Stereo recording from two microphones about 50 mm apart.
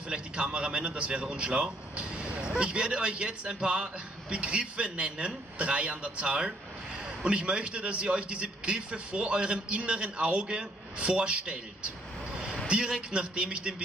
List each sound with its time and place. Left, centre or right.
0.1 s a man's voice: right
12.6 s a man's voice: centre